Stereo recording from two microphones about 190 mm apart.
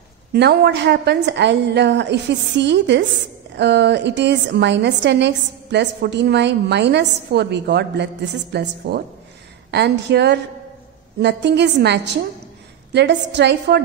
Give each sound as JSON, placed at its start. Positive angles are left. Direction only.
{"t": 0.3, "sound": "a woman's voice", "side_deg": -60}